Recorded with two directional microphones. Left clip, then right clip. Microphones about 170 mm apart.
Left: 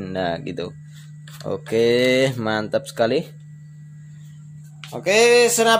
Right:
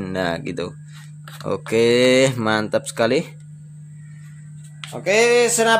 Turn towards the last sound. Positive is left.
turn(degrees=20)  # may be behind; listen again after turning